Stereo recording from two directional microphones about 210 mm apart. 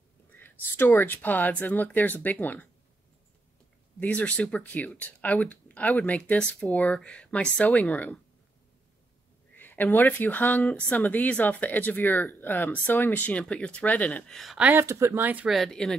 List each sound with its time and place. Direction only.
0.3 s speech: 10° left (ahead or behind)
4.0 s speech: 5° left (ahead or behind)
9.6 s speech: 10° left (ahead or behind)